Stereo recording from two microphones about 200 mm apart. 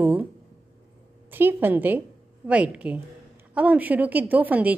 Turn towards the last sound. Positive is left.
turn(degrees=-10)  # may be behind; listen again after turning